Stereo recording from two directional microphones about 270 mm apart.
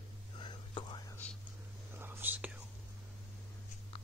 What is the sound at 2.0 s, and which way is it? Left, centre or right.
Whispering, centre.